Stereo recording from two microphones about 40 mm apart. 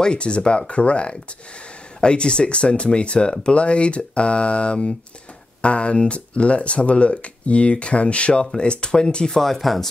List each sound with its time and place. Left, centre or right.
0.0 s speech: left
9.4 s speech: centre